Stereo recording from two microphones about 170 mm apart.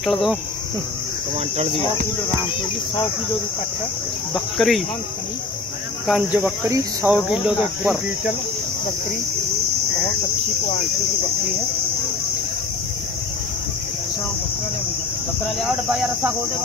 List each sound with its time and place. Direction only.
0.0 s speech: centre (ahead or behind)
1.6 s speech: 35° right (ahead or behind)
4.3 s speech: centre (ahead or behind)
6.0 s speech: centre (ahead or behind)
6.4 s speech: 15° right (ahead or behind)
15.6 s speech: 5° right (ahead or behind)